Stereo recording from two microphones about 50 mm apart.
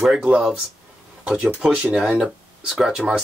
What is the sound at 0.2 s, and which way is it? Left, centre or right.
Speech, centre.